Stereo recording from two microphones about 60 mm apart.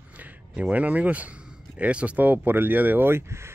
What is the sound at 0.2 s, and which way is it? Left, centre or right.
A man's voice, right.